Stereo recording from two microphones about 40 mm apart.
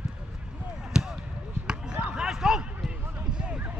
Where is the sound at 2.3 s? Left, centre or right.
Centre.